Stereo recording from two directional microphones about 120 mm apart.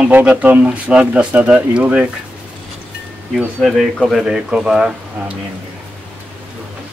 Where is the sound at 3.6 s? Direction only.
Centre (ahead or behind).